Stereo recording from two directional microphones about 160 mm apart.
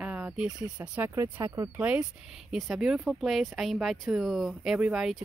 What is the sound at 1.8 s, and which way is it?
Speech, 10° right (ahead or behind).